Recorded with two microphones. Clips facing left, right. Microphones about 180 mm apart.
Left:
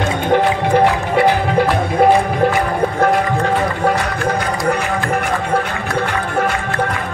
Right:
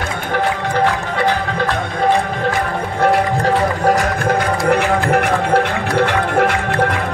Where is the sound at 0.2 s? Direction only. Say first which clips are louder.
Left 4 dB; 15° left (ahead or behind).